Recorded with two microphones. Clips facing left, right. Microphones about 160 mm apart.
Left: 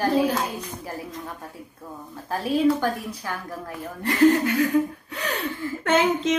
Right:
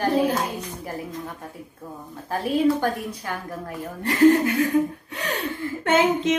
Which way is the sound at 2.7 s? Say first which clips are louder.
Right 1 dB; 50° right (ahead or behind).